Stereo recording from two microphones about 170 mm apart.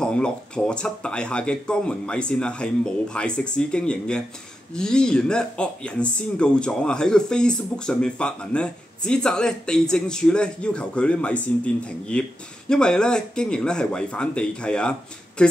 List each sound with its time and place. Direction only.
0.0 s speech: 5° left (ahead or behind)